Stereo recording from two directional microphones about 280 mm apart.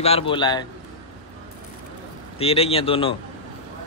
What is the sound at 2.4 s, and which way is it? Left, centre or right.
Speech, left.